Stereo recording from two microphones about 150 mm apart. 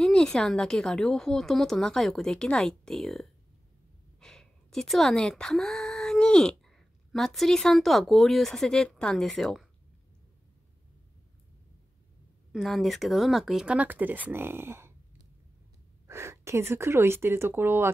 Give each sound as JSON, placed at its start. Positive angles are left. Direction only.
{"t": 0.0, "sound": "a woman's voice", "side_deg": 5}
{"t": 12.5, "sound": "speech", "side_deg": 0}
{"t": 16.1, "sound": "speech", "side_deg": -20}